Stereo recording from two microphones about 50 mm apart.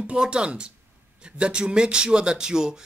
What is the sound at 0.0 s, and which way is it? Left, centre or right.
A man's voice, right.